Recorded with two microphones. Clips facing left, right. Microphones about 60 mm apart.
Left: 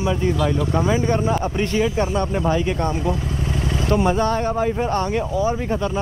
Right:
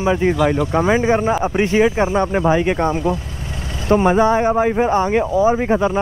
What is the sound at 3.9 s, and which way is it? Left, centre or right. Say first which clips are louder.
Speech: right 6 dB; right.